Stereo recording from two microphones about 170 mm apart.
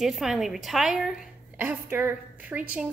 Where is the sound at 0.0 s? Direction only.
Centre (ahead or behind).